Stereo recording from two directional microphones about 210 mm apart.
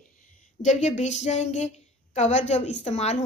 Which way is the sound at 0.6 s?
35° left (ahead or behind).